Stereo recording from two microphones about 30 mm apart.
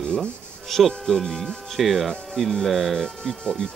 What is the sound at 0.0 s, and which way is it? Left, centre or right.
Music, centre.